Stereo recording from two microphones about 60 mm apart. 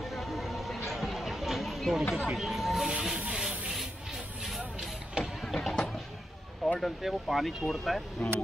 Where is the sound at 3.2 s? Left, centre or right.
Centre.